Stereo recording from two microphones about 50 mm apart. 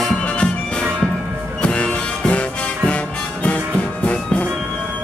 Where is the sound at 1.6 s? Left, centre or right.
Centre.